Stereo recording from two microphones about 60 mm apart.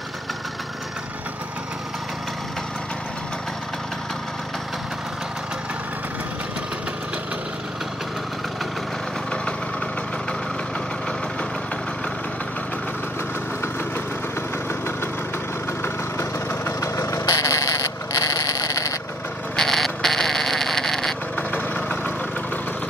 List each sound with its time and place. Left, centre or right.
15.8 s vehicle: left
19.5 s a sound: centre
21.4 s vehicle: left